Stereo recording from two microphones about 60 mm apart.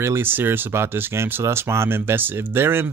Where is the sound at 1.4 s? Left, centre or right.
Right.